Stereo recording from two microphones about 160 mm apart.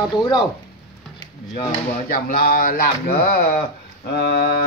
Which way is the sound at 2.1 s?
65° left (ahead or behind).